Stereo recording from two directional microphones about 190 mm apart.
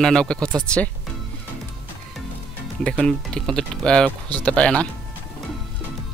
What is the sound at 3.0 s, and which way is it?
Speech, 5° left (ahead or behind).